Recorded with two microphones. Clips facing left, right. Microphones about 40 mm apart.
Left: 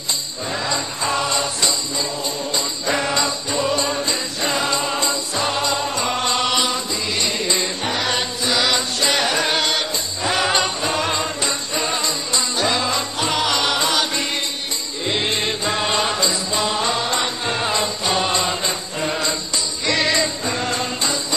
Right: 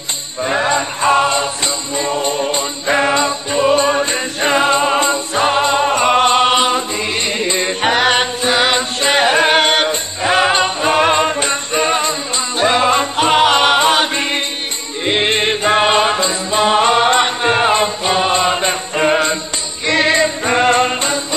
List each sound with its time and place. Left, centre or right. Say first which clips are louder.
0.4 s music: right 10 dB; right